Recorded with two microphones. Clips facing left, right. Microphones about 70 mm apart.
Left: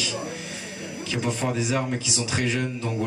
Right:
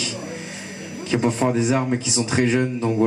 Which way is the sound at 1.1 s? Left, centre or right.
Right.